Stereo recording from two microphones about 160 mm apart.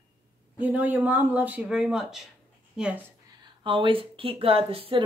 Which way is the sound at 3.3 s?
30° right (ahead or behind).